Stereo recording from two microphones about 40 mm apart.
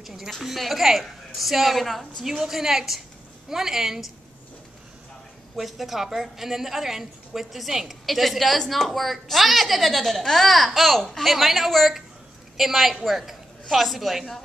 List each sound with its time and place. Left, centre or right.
0.0 s dog: centre
0.3 s a woman's voice: centre
2.2 s a woman's voice: centre
5.6 s a woman's voice: centre